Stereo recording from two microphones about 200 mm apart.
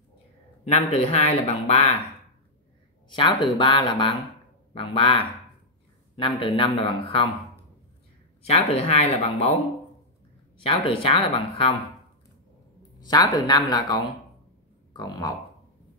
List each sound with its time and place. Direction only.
0.7 s speech: 35° left (ahead or behind)
3.1 s speech: 25° left (ahead or behind)
8.4 s speech: 30° left (ahead or behind)
10.6 s speech: 25° left (ahead or behind)
13.0 s speech: 20° left (ahead or behind)
15.0 s speech: 15° left (ahead or behind)